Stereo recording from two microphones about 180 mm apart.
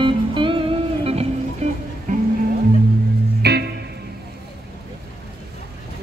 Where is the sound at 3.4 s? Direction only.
65° right (ahead or behind).